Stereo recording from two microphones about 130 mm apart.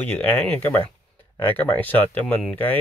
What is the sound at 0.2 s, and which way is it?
Speech, 10° left (ahead or behind).